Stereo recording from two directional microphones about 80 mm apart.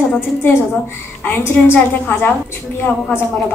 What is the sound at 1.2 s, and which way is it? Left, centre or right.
A woman's voice, left.